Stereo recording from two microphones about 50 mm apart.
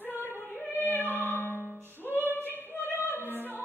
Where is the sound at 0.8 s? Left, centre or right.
Left.